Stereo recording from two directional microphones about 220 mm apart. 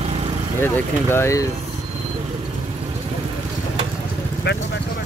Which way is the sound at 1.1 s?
10° left (ahead or behind).